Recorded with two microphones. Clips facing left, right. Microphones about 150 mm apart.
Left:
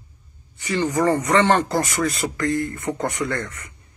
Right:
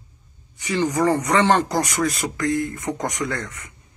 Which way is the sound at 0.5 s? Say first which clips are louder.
Even; 10° right (ahead or behind).